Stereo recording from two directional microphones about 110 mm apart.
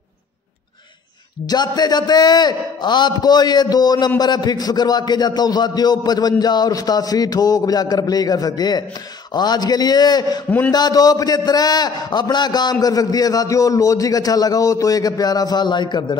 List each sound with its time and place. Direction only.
1.4 s music: 40° left (ahead or behind)